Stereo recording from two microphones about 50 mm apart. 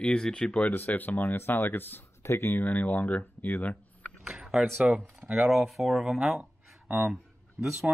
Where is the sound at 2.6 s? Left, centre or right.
Left.